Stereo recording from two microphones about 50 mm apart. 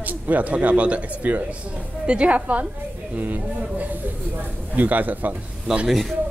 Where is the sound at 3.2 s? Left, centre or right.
Right.